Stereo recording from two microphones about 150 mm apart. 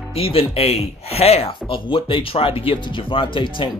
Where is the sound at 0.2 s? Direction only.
40° left (ahead or behind).